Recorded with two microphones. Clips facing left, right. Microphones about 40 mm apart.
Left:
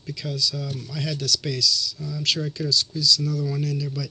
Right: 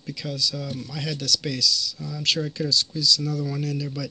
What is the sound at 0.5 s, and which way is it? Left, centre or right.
Speech, centre.